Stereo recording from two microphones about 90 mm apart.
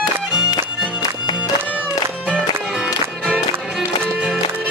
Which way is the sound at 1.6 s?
15° right (ahead or behind).